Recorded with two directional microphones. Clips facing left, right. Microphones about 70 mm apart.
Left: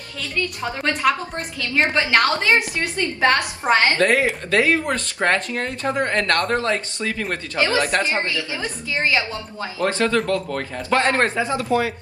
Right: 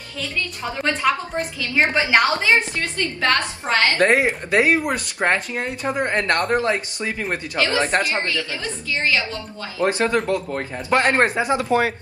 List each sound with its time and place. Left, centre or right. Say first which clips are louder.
1.0 s a woman's voice: left 1 dB; centre
1.8 s a woman's voice: right 1 dB; centre
2.8 s a woman's voice: left 3 dB; left
4.0 s speech: right 1 dB; right
8.0 s a woman's voice: even; left
9.8 s speech: right 1 dB; right